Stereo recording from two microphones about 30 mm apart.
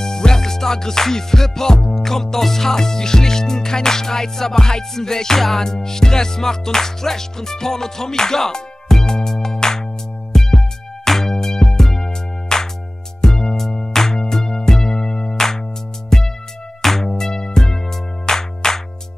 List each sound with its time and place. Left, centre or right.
0.0 s music: left
15.3 s music: centre